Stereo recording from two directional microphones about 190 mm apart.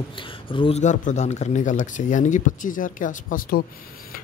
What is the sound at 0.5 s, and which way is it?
Speech, 30° left (ahead or behind).